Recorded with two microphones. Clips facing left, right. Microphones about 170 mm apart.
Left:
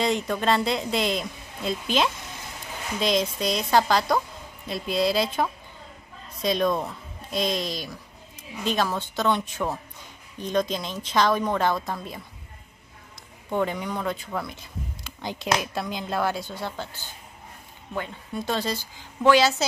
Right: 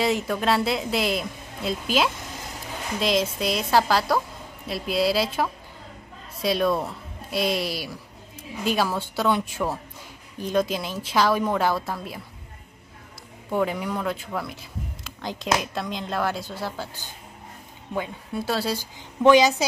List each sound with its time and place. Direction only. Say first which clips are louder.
0.0 s a woman's voice: right 1 dB; 5° right (ahead or behind)
13.5 s a woman's voice: right 1 dB; 5° right (ahead or behind)